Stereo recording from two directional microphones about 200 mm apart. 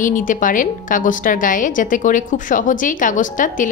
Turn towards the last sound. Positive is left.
turn(degrees=40)  # may be behind; listen again after turning